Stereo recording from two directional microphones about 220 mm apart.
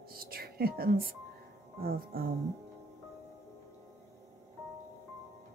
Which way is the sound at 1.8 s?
40° right (ahead or behind).